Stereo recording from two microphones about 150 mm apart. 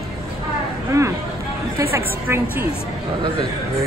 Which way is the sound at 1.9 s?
15° right (ahead or behind).